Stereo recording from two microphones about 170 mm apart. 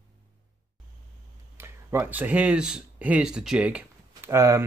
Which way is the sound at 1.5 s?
15° right (ahead or behind).